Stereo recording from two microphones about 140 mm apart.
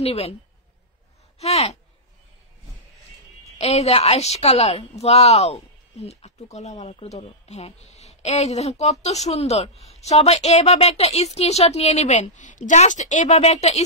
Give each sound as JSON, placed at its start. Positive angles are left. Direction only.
{"t": 0.0, "sound": "a woman's voice", "side_deg": 45}
{"t": 1.4, "sound": "a woman's voice", "side_deg": 50}
{"t": 3.5, "sound": "a woman's voice", "side_deg": 50}